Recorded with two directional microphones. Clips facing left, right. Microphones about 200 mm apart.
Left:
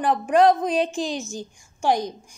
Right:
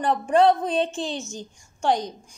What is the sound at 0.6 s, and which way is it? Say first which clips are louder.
Speech: left 2 dB; 25° right (ahead or behind).